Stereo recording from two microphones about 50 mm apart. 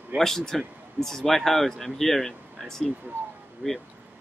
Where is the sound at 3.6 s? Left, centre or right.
Right.